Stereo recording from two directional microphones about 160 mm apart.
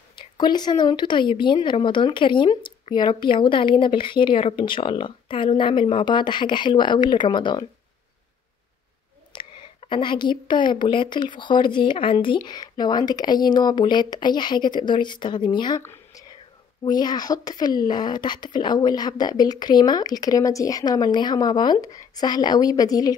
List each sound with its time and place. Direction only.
0.1 s speech: 30° left (ahead or behind)
9.4 s speech: 30° left (ahead or behind)
15.8 s whispering: 15° left (ahead or behind)
16.8 s speech: 25° left (ahead or behind)